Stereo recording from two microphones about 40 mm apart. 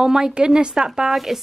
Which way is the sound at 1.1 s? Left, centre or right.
Centre.